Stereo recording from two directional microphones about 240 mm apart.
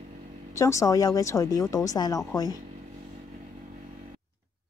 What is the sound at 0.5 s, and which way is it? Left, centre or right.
A woman's voice, centre.